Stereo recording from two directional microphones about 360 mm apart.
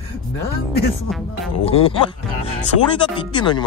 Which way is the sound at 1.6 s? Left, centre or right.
Centre.